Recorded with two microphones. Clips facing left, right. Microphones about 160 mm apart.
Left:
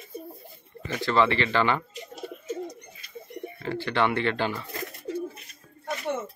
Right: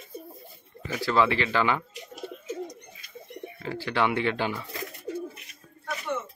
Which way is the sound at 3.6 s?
10° right (ahead or behind).